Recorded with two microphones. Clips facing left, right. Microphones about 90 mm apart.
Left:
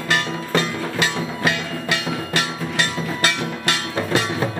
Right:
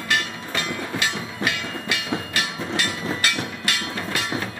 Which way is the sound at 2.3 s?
35° left (ahead or behind).